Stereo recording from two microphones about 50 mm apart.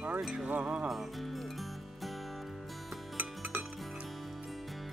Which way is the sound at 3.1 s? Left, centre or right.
Right.